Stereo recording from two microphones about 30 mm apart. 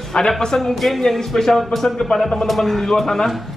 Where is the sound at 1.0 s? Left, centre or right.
Centre.